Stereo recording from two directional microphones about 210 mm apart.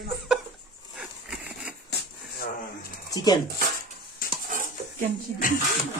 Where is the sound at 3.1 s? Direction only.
20° left (ahead or behind).